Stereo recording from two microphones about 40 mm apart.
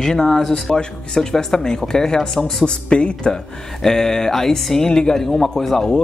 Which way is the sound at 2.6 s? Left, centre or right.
Left.